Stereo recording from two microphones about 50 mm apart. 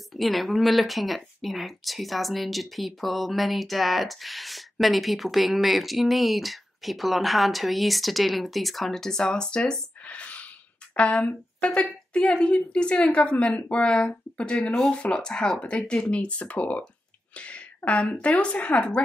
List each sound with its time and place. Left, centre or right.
0.1 s speech: centre
10.0 s a sound: left
11.0 s speech: left